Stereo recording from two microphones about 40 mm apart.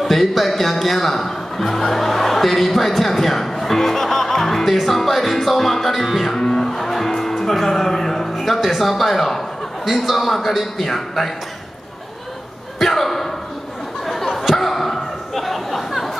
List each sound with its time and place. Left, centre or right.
0.0 s speech: centre
4.7 s music: centre
6.4 s music: centre
8.5 s a man's voice: centre
12.7 s a sound: centre